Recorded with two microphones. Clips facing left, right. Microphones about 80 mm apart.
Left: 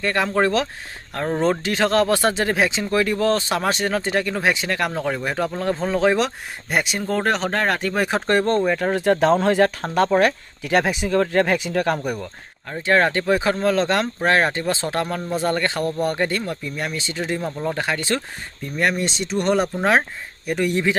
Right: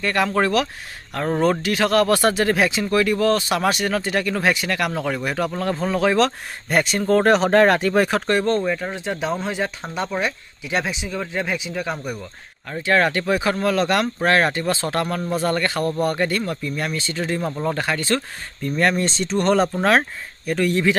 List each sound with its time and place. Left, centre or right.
0.0 s speech: left
6.2 s speech: centre
7.2 s speech: centre
8.3 s speech: left
8.6 s speech: left
11.1 s speech: left
12.6 s speech: left
17.4 s speech: centre
17.7 s speech: left
18.8 s speech: centre